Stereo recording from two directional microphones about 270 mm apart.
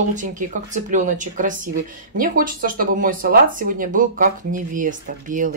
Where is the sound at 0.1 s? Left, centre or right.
Right.